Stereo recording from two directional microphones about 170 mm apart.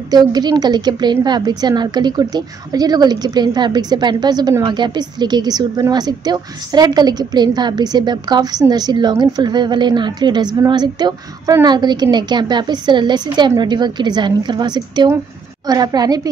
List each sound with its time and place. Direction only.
0.1 s a woman's voice: 25° right (ahead or behind)